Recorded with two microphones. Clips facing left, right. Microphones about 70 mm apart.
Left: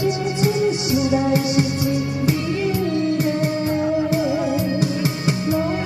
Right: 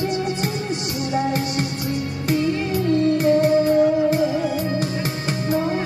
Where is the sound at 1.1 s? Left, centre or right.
Right.